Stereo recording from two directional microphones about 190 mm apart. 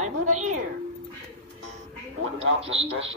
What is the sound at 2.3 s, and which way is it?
Speech, 30° right (ahead or behind).